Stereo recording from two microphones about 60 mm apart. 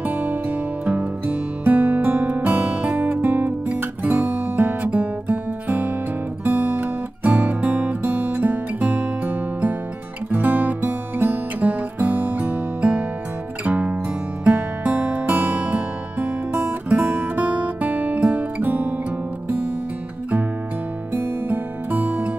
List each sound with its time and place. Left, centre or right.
0.0 s music: right
3.2 s music: right
3.6 s guitar: right
4.3 s music: right
21.1 s music: right